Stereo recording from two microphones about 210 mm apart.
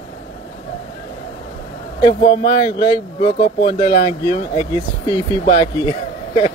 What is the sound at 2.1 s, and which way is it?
Speech, 25° left (ahead or behind).